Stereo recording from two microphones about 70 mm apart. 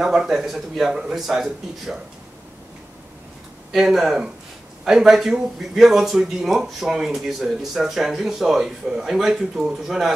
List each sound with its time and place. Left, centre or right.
0.0 s speech: centre
3.7 s speech: centre